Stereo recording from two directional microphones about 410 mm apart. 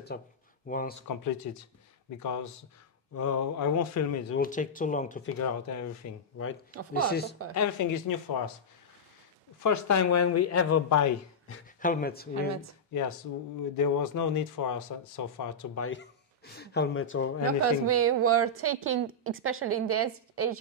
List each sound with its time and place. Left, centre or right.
0.1 s speech: left
1.0 s speech: left
4.4 s speech: centre
5.4 s speech: left
6.7 s a woman's voice: right
7.1 s speech: left
7.5 s speech: left
9.6 s speech: left
11.8 s speech: left
13.7 s speech: left
15.8 s speech: left
17.6 s a woman's voice: right